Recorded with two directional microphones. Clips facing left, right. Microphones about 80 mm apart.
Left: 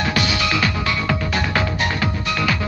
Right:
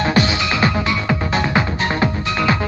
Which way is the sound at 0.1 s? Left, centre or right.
Right.